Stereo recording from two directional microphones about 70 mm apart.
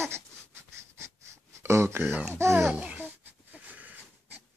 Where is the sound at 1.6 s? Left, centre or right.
Right.